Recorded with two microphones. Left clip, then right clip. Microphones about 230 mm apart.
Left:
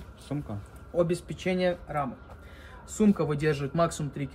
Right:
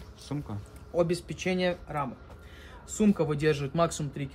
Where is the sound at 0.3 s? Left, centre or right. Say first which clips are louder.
Left 2 dB; centre.